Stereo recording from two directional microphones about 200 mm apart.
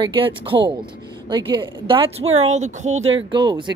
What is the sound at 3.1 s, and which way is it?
Speech, 25° right (ahead or behind).